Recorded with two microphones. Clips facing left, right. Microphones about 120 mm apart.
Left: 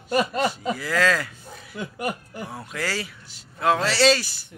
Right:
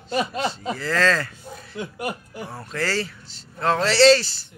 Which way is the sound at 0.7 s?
10° left (ahead or behind).